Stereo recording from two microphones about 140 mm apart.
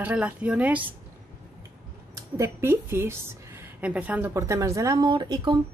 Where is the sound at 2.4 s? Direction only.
20° right (ahead or behind).